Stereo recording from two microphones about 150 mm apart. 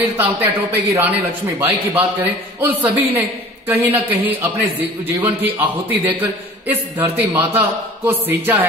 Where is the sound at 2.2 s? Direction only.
10° right (ahead or behind).